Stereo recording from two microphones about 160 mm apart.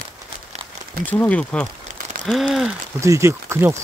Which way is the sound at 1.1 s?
10° left (ahead or behind).